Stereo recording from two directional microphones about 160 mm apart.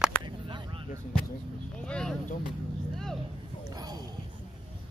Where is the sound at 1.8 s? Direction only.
5° left (ahead or behind).